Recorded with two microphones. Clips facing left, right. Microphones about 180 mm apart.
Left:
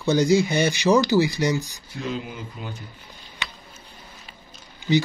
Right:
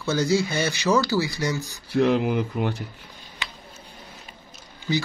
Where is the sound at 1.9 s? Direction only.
70° right (ahead or behind).